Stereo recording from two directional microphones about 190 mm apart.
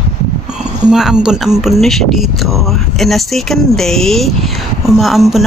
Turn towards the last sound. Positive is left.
turn(degrees=0)  # may be behind; listen again after turning